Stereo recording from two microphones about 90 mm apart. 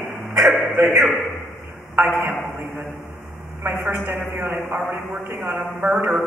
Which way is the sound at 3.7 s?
Centre (ahead or behind).